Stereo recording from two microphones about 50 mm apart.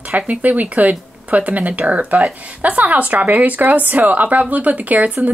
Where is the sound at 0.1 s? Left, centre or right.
Right.